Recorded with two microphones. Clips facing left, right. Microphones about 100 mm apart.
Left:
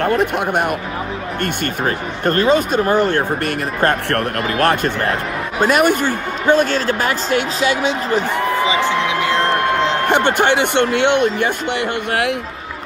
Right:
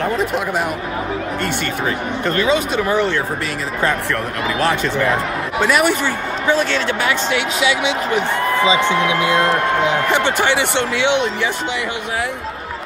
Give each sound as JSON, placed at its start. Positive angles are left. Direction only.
{"t": 0.0, "sound": "speech", "side_deg": 60}
{"t": 1.4, "sound": "speech", "side_deg": 45}
{"t": 8.6, "sound": "speech", "side_deg": -20}
{"t": 10.0, "sound": "speech", "side_deg": 55}